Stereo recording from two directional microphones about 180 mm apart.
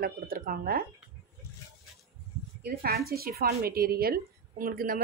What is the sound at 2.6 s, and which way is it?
A woman's voice, 60° right (ahead or behind).